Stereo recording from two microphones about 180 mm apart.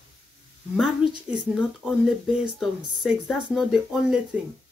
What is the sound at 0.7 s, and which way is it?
A woman's voice, 5° right (ahead or behind).